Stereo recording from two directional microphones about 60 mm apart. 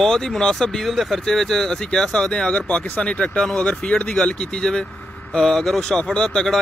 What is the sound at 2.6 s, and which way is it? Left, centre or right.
Speech, left.